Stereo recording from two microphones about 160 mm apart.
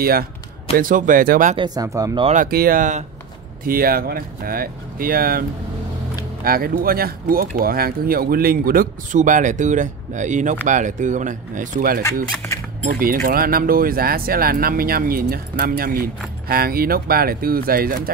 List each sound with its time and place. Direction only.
0.0 s speech: 70° right (ahead or behind)
0.7 s speech: 55° right (ahead or behind)
1.6 s speech: 20° right (ahead or behind)
2.3 s speech: 65° right (ahead or behind)
3.6 s speech: 65° right (ahead or behind)
6.4 s speech: 65° right (ahead or behind)